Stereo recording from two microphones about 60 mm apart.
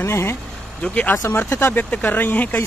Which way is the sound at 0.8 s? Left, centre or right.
Left.